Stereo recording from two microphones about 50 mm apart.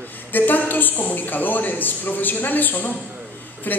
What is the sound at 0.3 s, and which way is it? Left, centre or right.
A woman's voice, left.